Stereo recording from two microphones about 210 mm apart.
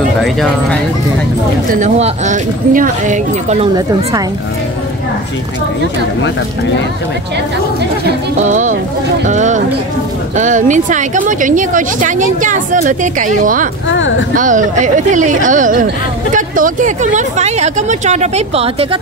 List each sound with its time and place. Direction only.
0.2 s speech: centre (ahead or behind)
1.7 s speech: 35° right (ahead or behind)
8.5 s speech: 35° right (ahead or behind)
13.8 s speech: 65° left (ahead or behind)
14.3 s speech: 40° right (ahead or behind)